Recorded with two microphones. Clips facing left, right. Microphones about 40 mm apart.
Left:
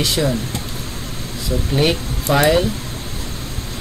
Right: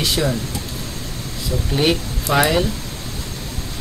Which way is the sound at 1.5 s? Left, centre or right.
Centre.